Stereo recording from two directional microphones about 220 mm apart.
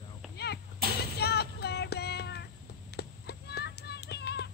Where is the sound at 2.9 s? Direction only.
45° left (ahead or behind).